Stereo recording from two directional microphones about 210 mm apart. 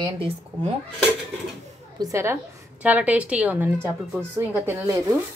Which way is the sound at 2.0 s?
15° right (ahead or behind).